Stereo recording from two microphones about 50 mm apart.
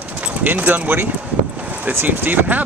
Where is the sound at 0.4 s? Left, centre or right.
Right.